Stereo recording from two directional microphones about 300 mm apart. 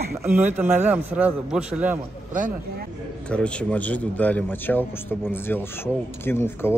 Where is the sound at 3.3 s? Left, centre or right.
Centre.